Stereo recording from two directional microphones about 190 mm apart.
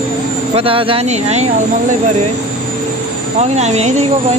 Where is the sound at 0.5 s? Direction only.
30° right (ahead or behind).